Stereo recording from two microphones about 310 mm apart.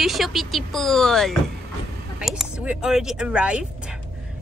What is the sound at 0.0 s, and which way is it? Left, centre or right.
Speech, centre.